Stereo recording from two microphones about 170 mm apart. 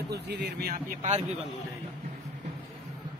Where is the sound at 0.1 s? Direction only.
80° right; by 1.2 s 50° right (ahead or behind).